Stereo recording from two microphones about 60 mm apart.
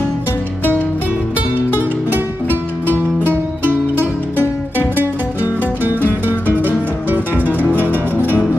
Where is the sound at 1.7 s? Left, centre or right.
Right.